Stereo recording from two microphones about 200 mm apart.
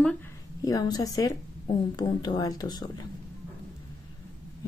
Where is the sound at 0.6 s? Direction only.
20° left (ahead or behind).